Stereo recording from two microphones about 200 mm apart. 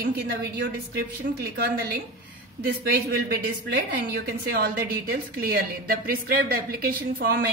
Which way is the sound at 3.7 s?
50° right (ahead or behind).